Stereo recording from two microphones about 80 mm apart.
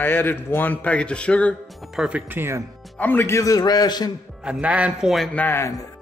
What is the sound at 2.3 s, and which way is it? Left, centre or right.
Speech, right.